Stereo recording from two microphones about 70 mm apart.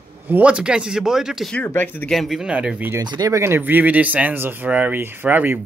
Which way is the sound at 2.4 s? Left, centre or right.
Centre.